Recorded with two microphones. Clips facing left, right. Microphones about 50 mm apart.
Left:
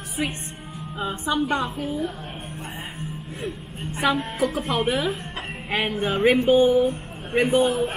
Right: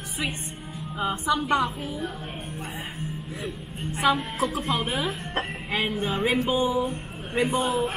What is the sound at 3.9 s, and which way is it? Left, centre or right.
Speech, centre.